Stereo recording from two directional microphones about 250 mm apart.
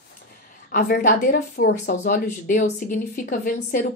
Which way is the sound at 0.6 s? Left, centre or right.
Left.